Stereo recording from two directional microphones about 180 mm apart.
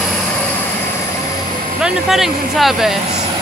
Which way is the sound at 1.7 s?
5° right (ahead or behind).